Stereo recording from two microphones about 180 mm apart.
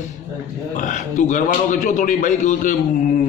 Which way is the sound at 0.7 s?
45° left (ahead or behind).